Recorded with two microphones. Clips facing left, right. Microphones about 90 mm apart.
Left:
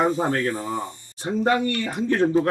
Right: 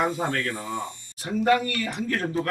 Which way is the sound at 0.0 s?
30° left (ahead or behind).